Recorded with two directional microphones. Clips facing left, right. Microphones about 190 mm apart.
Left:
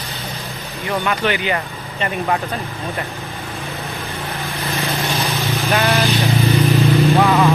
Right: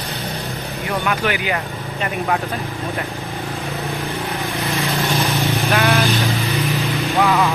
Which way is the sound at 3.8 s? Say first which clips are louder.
Right 3 dB; 15° right (ahead or behind).